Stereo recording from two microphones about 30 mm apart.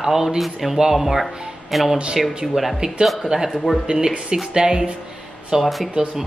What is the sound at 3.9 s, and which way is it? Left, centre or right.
Speech, right.